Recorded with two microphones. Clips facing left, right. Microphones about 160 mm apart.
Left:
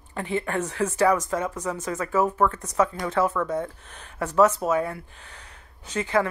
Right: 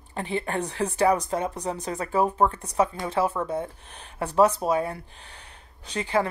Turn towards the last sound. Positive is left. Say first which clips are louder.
# left 1 dB
turn(degrees=-30)  # may be behind; listen again after turning